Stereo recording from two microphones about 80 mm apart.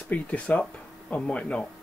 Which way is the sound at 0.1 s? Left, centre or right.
Centre.